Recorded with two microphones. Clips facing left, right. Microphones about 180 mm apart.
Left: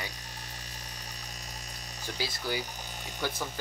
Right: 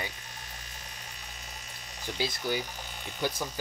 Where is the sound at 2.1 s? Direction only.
20° right (ahead or behind).